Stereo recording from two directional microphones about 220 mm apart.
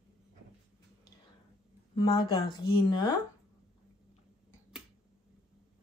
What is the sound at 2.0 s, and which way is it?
Speech, 20° left (ahead or behind).